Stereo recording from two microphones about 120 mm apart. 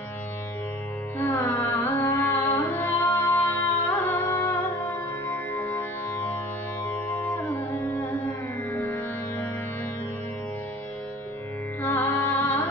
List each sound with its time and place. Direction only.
1.1 s music: 20° left (ahead or behind)
11.8 s music: 15° left (ahead or behind)